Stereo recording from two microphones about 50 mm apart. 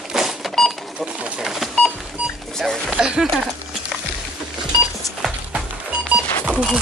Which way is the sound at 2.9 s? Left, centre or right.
Centre.